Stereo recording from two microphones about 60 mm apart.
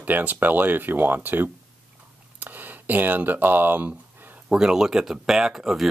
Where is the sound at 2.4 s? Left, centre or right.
Right.